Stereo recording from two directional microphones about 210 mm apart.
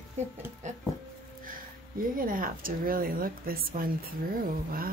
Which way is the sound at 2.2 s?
40° right (ahead or behind).